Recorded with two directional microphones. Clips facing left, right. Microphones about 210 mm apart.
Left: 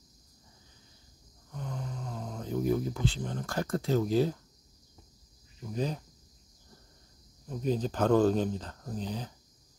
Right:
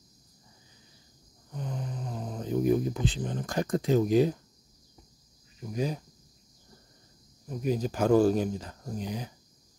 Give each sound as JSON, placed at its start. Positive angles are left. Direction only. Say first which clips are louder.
{"t": 1.5, "sound": "snoring", "louder": "right 3 dB", "side_deg": -15}
{"t": 5.7, "sound": "speech", "louder": "right 2 dB", "side_deg": -10}
{"t": 7.4, "sound": "speech", "louder": "right 1 dB", "side_deg": -10}